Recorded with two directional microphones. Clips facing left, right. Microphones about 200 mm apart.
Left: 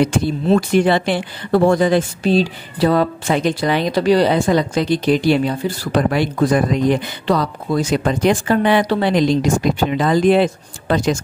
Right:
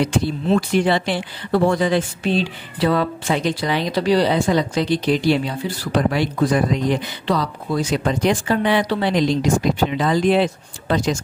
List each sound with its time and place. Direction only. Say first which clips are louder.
0.0 s speech: left 3 dB; 50° left (ahead or behind)